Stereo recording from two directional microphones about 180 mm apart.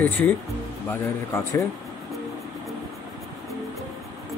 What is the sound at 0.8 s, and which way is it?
Speech, 15° left (ahead or behind).